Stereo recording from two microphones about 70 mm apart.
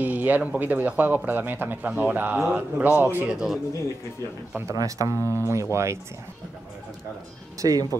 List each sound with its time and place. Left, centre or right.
0.0 s speech: right
3.3 s speech: centre
4.7 s speech: right
7.6 s speech: right